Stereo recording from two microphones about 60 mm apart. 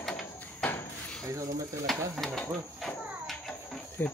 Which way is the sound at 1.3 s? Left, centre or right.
Right.